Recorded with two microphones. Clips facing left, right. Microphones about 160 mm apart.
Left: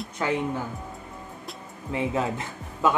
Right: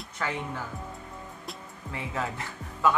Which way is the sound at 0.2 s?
20° left (ahead or behind).